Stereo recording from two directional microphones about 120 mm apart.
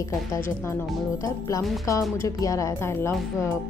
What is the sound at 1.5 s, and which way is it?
Speech, 25° left (ahead or behind).